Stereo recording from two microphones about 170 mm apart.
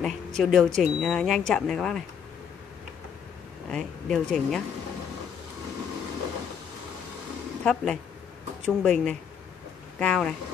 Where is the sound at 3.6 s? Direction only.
5° left (ahead or behind).